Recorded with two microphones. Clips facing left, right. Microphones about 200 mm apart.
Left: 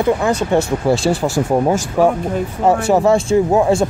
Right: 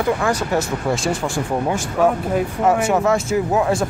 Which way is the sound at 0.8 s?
35° left (ahead or behind).